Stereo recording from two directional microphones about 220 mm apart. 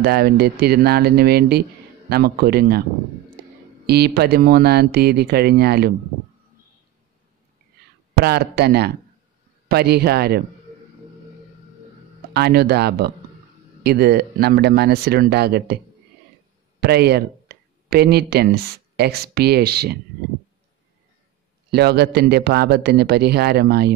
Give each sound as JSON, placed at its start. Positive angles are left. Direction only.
{"t": 0.0, "sound": "a man's voice", "side_deg": -45}
{"t": 3.8, "sound": "a man's voice", "side_deg": -45}
{"t": 7.8, "sound": "a sound", "side_deg": -45}
{"t": 8.2, "sound": "a man's voice", "side_deg": -45}
{"t": 12.3, "sound": "a man's voice", "side_deg": -45}
{"t": 16.8, "sound": "speech", "side_deg": -45}
{"t": 21.6, "sound": "a man's voice", "side_deg": -45}